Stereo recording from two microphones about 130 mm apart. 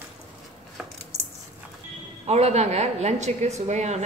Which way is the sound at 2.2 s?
60° right (ahead or behind).